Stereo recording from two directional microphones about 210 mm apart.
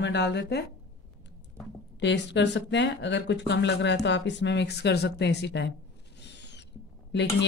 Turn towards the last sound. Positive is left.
turn(degrees=55)  # may be behind; listen again after turning